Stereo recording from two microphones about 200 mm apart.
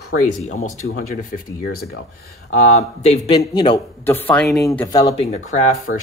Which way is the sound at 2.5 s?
30° left (ahead or behind).